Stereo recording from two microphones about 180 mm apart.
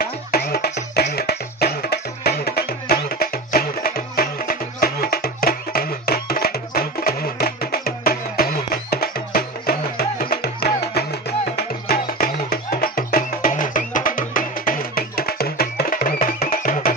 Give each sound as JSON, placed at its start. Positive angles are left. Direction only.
{"t": 0.0, "sound": "music", "side_deg": 60}